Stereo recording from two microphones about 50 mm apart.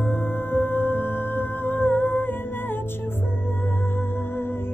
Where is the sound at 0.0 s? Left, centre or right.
Left.